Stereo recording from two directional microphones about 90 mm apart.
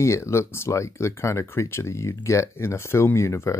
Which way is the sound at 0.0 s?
30° left (ahead or behind).